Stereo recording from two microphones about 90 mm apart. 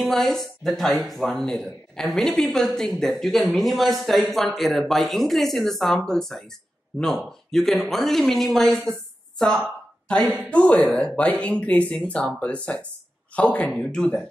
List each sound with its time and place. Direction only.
0.0 s speech: 5° left (ahead or behind)
9.4 s a sound: 5° left (ahead or behind)
10.5 s speech: 15° left (ahead or behind)